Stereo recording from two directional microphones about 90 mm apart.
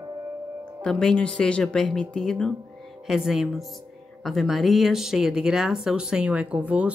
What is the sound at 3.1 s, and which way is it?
Speech, 5° right (ahead or behind).